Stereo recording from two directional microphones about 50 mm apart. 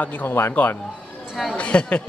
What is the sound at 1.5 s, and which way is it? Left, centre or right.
Speech, left.